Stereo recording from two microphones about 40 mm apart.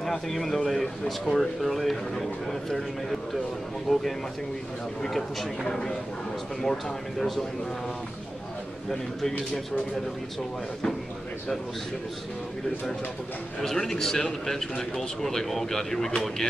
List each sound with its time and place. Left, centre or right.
0.0 s a man's voice: centre
3.9 s speech: left
5.1 s speech: centre
5.7 s a man's voice: centre
13.6 s a man's voice: centre